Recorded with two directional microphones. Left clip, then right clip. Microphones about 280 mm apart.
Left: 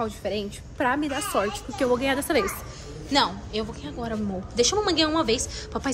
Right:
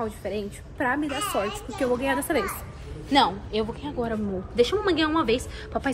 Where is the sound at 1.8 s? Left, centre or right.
Centre.